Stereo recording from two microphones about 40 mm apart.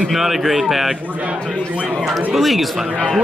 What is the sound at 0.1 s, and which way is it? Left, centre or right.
Speech, centre.